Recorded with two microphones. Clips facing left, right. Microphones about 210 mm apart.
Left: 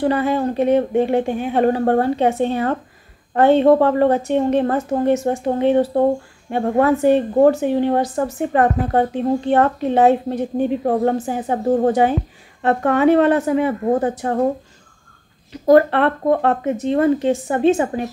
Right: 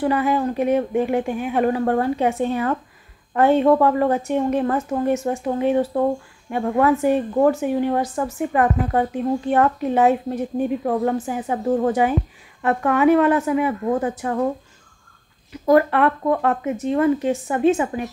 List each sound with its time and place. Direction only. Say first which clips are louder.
0.0 s speech: left 2 dB; 30° left (ahead or behind)
4.6 s speech: left 3 dB; 40° left (ahead or behind)
10.8 s speech: left 3 dB; 40° left (ahead or behind)
15.6 s speech: left 3 dB; 35° left (ahead or behind)